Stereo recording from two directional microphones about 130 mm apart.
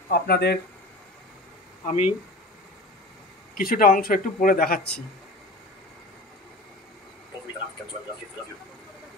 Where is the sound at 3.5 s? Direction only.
90° left.